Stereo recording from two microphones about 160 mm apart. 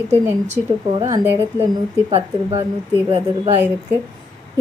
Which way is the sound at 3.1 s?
35° right (ahead or behind).